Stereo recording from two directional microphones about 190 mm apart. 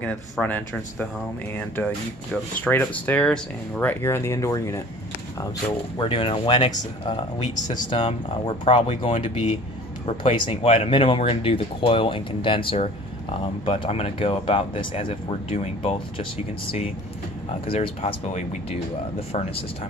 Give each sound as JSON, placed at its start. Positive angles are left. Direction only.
{"t": 0.0, "sound": "speech", "side_deg": 5}
{"t": 2.6, "sound": "speech", "side_deg": 10}
{"t": 5.9, "sound": "speech", "side_deg": 30}
{"t": 17.6, "sound": "speech", "side_deg": 30}